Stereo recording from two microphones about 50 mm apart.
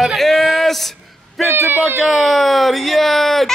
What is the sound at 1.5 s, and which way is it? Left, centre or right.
Speech, right.